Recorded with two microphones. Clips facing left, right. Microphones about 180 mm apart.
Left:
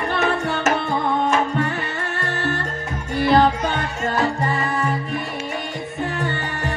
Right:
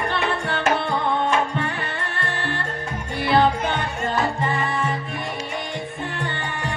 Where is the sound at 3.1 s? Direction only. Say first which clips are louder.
Left 3 dB; 45° left (ahead or behind).